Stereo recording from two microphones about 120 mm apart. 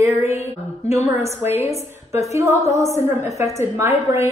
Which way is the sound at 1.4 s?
20° right (ahead or behind).